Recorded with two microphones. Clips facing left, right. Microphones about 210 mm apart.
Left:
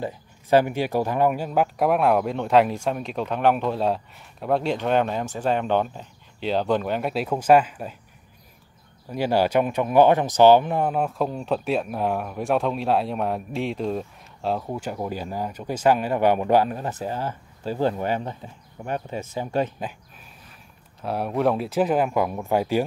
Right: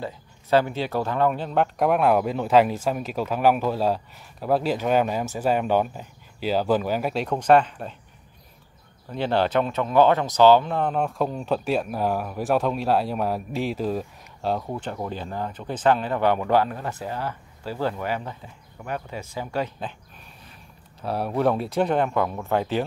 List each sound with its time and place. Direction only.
0.0 s speech: 15° left (ahead or behind)
9.1 s speech: 10° left (ahead or behind)
21.0 s speech: centre (ahead or behind)